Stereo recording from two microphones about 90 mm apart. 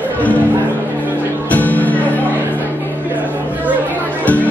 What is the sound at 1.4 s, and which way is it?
Music, 15° left (ahead or behind).